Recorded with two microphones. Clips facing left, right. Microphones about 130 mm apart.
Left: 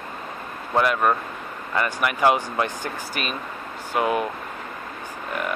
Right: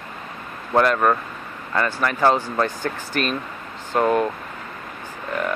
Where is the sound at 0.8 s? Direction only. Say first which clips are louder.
Right 3 dB; 10° left (ahead or behind).